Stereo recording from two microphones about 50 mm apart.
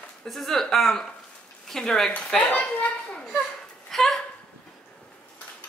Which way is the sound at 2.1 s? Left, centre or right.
Left.